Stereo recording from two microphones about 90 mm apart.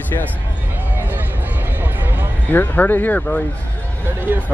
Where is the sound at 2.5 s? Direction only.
20° left (ahead or behind).